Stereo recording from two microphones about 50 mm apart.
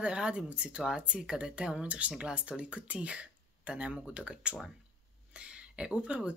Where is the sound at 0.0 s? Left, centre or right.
Right.